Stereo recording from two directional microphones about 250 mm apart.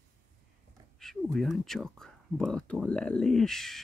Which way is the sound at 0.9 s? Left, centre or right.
Centre.